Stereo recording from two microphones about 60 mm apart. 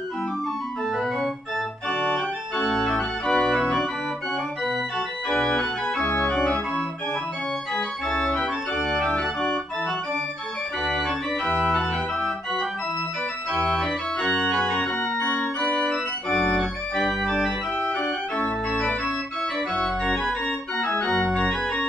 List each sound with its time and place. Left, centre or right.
1.9 s organ: centre
2.5 s organ: centre
5.3 s organ: centre
6.0 s organ: left
7.7 s organ: centre
10.8 s organ: centre
14.2 s organ: centre
17.8 s organ: centre